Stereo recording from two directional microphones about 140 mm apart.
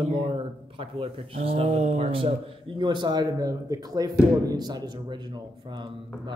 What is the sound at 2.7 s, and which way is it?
A man's voice, 35° right (ahead or behind).